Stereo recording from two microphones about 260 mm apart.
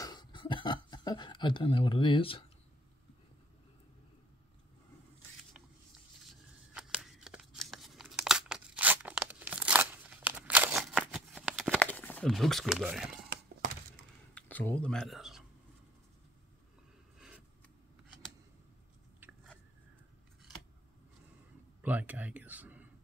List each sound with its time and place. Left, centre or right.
0.0 s a sound: centre
6.7 s tearing: centre
14.3 s speech: centre
21.8 s speech: centre